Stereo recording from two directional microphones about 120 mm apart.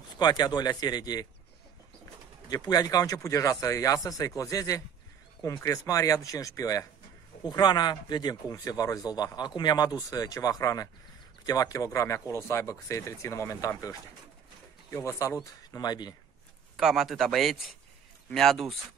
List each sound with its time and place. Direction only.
0.2 s speech: 35° left (ahead or behind)
2.5 s speech: 35° left (ahead or behind)
16.7 s a man's voice: 5° right (ahead or behind)